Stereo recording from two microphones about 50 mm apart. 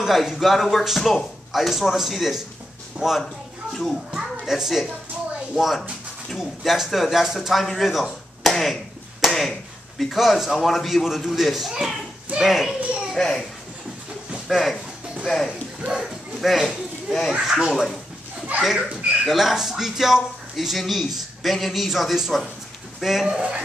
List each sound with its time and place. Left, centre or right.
0.0 s a child's voice: centre
12.4 s a sound: centre
13.2 s a child's voice: centre
14.5 s a child's voice: centre
16.0 s children playing: centre
17.3 s speech: centre
18.5 s speech: right
19.2 s speech: centre
23.2 s speech: centre